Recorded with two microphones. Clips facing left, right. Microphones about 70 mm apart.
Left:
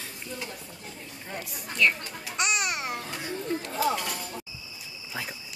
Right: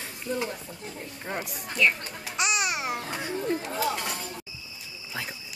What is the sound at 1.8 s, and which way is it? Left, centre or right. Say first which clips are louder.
A child's voice: even; centre.